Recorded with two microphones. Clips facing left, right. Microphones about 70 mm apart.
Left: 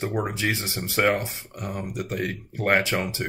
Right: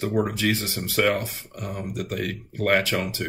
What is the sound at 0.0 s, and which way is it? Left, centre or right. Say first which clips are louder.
Speech: right 3 dB; left.